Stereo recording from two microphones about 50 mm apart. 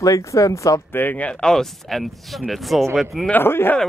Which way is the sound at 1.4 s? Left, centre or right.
Centre.